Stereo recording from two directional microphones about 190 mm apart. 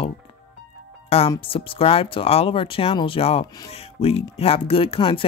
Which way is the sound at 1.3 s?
30° left (ahead or behind).